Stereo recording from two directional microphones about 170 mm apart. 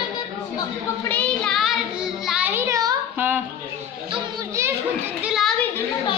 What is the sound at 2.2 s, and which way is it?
Child singing, 5° right (ahead or behind).